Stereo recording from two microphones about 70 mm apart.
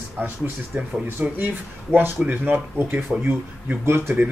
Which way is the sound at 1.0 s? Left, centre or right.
Right.